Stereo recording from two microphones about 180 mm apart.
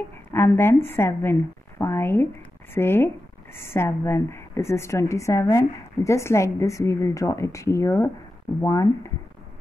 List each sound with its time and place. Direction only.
0.3 s a woman's voice: 15° left (ahead or behind)